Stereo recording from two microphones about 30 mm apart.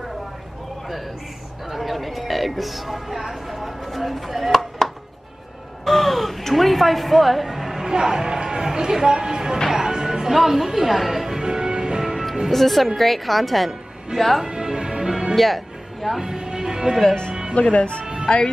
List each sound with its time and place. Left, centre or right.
1.7 s speech: centre
5.9 s speech: centre; by 9.6 s right
9.7 s music: centre
10.3 s speech: centre
11.4 s music: right
12.0 s music: centre
12.4 s a woman's voice: centre
14.4 s music: right
15.3 s speech: centre
16.3 s music: right
17.0 s speech: left
17.3 s music: right
17.6 s speech: left